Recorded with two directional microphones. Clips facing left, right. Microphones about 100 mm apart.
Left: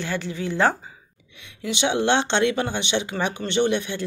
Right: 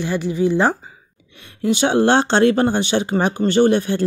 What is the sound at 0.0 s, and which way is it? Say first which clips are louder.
Speech: right 8 dB; 15° right (ahead or behind).